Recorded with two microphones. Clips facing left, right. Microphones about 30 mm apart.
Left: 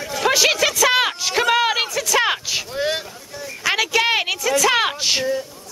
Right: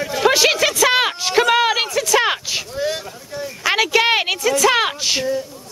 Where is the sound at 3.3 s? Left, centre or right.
Centre.